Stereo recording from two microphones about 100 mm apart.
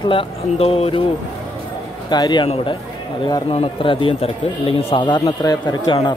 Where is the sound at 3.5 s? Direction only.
60° left (ahead or behind).